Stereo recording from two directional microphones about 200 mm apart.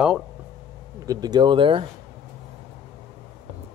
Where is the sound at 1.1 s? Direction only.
20° right (ahead or behind).